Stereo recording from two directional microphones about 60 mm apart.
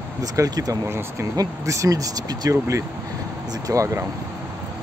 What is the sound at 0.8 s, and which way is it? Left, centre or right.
Speech, right.